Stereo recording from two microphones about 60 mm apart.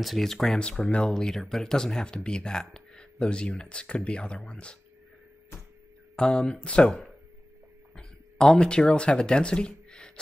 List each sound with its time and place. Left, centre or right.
0.0 s speech: centre
0.6 s speech: centre
6.1 s speech: centre